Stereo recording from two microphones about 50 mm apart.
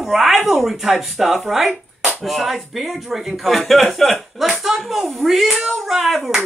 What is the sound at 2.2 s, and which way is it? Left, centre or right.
Speech, centre.